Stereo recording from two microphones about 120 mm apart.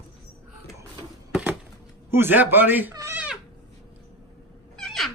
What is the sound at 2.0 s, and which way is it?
Speech, 20° right (ahead or behind).